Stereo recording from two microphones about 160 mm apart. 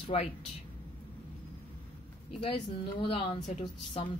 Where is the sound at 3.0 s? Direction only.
40° left (ahead or behind).